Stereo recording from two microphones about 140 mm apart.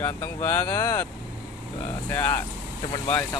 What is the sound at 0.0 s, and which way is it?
Speech, 15° left (ahead or behind).